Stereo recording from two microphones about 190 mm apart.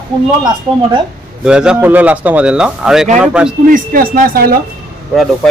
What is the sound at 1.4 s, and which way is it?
Speech, 5° right (ahead or behind).